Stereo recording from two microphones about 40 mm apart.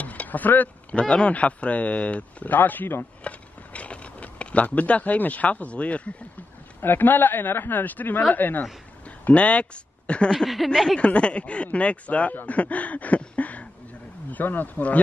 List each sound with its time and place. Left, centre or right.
0.0 s a sound: left
0.9 s speech: left
2.4 s speech: left
3.3 s speech: left
6.8 s speech: left
9.3 s speech: left
10.3 s speech: centre
11.0 s speech: left
13.4 s a sound: left
14.3 s speech: left